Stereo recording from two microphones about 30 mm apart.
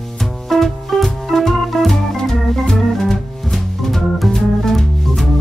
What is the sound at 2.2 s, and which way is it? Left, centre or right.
Organ, centre.